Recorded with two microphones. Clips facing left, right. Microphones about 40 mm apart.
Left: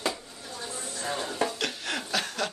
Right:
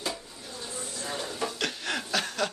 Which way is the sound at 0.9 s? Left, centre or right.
Left.